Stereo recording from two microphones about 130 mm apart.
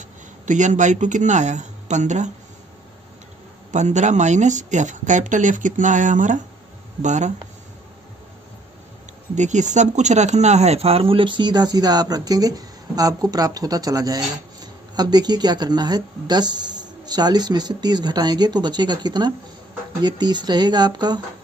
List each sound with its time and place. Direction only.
0.5 s speech: 70° right (ahead or behind)
3.7 s speech: 65° right (ahead or behind)
9.3 s speech: 65° right (ahead or behind); by 21.2 s 35° right (ahead or behind)